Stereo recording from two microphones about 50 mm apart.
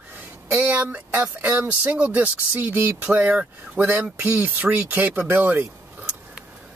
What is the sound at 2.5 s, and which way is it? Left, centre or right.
Speech, right.